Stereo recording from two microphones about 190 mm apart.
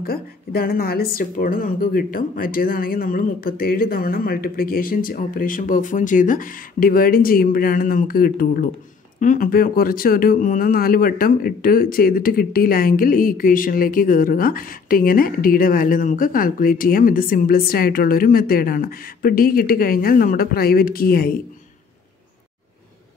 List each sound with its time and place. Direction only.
0.0 s speech: 50° left (ahead or behind)